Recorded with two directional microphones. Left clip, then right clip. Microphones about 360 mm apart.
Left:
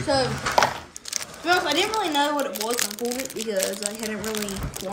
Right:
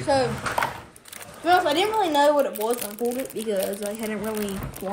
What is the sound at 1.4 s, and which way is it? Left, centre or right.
Speech, centre.